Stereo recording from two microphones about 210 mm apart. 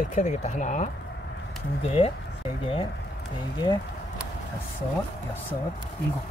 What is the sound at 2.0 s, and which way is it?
Speech, 25° left (ahead or behind).